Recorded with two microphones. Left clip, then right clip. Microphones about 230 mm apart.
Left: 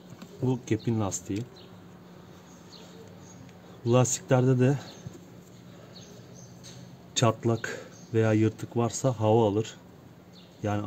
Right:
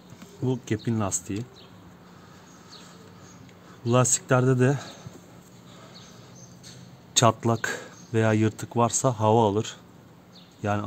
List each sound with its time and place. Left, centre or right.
0.5 s speech: right
3.8 s speech: right
7.2 s speech: right